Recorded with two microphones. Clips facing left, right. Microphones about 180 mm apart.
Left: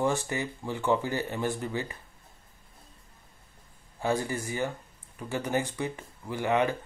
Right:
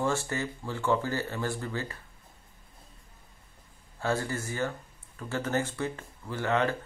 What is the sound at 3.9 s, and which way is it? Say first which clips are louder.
Speech: left 1 dB; 15° left (ahead or behind).